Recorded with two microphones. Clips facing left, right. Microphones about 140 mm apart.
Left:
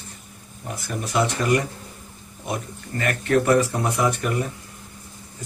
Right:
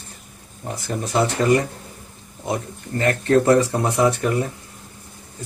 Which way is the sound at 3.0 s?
25° right (ahead or behind).